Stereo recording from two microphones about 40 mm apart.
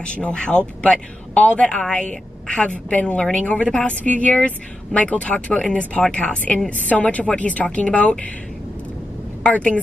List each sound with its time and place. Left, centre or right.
0.1 s speech: left
9.4 s a woman's voice: left